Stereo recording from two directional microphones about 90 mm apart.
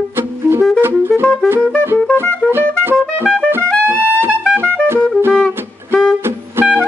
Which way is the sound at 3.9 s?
25° right (ahead or behind).